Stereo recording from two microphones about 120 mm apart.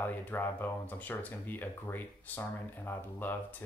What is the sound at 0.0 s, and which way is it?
Speech, 15° left (ahead or behind).